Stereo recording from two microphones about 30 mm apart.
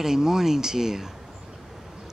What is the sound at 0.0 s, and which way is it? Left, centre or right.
Speech, centre.